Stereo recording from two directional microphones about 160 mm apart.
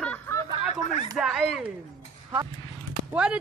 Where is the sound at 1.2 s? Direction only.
5° right (ahead or behind).